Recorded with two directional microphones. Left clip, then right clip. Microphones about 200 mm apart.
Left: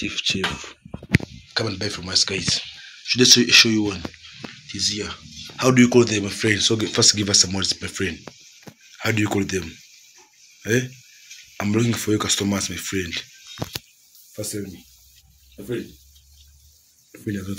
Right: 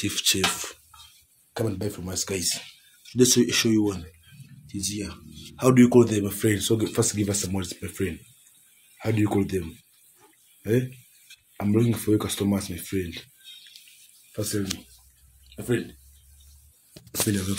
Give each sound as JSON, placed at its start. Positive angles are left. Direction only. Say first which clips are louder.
{"t": 0.0, "sound": "speech", "louder": "left 1 dB", "side_deg": -30}
{"t": 6.7, "sound": "speech", "louder": "left 6 dB", "side_deg": -5}
{"t": 14.3, "sound": "speech", "louder": "right 1 dB", "side_deg": -30}